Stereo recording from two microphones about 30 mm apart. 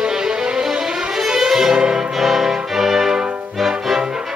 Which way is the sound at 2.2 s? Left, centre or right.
Centre.